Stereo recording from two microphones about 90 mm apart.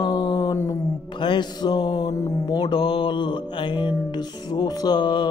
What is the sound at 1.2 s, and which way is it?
Music, 60° left (ahead or behind).